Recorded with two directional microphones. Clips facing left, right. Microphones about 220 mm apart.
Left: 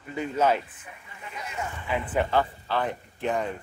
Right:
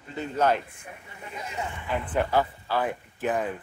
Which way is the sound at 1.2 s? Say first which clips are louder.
Right 1 dB; 30° right (ahead or behind).